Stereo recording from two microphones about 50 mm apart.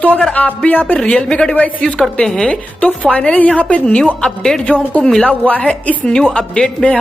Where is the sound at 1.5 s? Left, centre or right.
Left.